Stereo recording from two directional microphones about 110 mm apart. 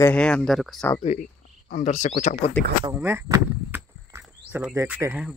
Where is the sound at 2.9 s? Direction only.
20° right (ahead or behind).